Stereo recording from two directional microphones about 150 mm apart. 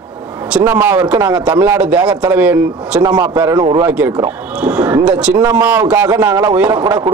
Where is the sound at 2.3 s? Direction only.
10° right (ahead or behind).